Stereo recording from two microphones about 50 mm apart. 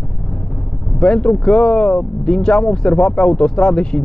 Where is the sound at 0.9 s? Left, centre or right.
Centre.